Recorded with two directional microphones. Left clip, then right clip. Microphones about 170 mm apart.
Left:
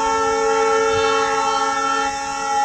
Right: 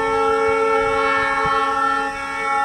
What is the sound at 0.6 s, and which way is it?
Train, 20° right (ahead or behind).